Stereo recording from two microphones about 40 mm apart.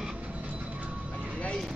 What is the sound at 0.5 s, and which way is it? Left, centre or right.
Vehicle, right.